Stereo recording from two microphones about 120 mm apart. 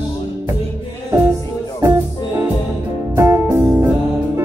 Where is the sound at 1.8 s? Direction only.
30° right (ahead or behind).